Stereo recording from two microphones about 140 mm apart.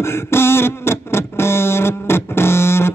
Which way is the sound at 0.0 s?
20° left (ahead or behind).